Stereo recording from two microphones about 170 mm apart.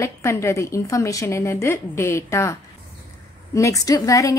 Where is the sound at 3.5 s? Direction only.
20° left (ahead or behind).